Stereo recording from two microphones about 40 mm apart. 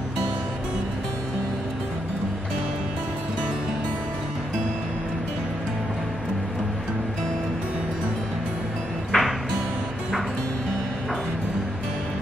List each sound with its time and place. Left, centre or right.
9.1 s music: left